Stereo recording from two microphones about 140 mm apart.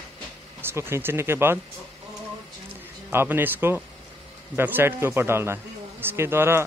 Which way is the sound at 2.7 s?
15° right (ahead or behind).